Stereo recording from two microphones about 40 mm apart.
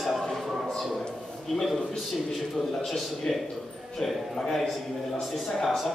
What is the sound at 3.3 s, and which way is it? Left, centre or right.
Speech, centre.